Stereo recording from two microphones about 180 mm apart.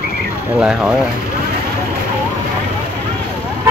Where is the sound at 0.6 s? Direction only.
5° right (ahead or behind).